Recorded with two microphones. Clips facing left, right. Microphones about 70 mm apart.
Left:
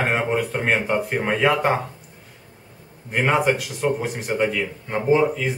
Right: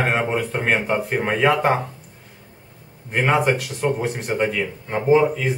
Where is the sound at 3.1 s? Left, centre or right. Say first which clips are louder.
Right 1 dB; centre.